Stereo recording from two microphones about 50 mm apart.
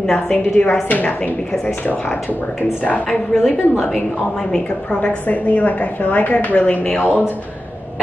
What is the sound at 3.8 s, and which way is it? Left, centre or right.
A woman's voice, centre.